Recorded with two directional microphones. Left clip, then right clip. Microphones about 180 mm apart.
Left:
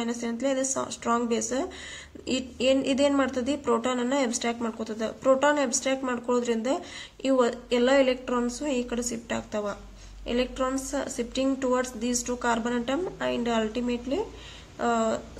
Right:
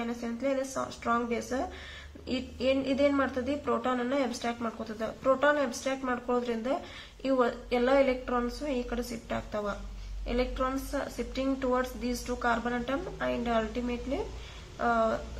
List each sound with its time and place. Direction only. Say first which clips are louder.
0.0 s a woman's voice: left 4 dB; 45° left (ahead or behind)
14.8 s a woman's voice: left 1 dB; 45° left (ahead or behind)